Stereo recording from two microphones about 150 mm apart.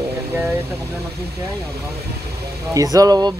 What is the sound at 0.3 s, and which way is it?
Vehicle, 15° right (ahead or behind).